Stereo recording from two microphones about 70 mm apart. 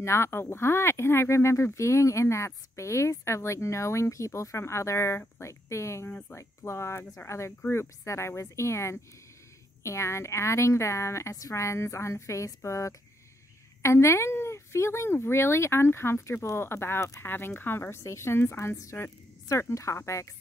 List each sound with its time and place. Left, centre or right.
0.0 s speech: left
6.0 s speech: left
6.3 s speech: left
19.7 s speech: left